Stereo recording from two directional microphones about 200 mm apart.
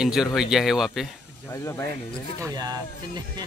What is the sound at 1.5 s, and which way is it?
Speech, 15° left (ahead or behind).